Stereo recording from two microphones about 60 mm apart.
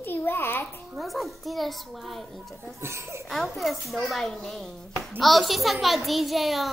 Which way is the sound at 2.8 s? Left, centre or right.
Right.